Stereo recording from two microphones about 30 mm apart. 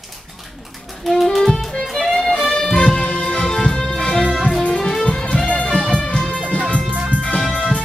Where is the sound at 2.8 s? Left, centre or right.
Left.